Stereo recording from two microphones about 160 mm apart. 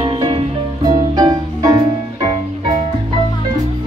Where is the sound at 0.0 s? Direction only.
30° right (ahead or behind).